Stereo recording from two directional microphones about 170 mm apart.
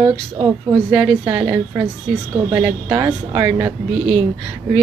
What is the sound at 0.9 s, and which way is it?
A woman's voice, 5° right (ahead or behind).